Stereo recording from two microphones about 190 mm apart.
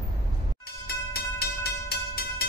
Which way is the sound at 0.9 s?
55° left (ahead or behind).